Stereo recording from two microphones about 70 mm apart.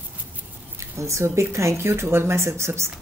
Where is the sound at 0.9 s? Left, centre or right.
Right.